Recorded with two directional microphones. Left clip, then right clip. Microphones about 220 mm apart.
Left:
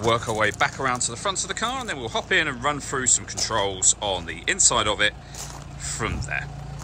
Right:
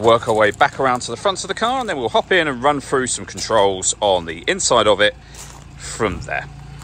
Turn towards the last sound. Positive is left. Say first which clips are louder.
# right 8 dB
turn(degrees=-5)  # may be behind; listen again after turning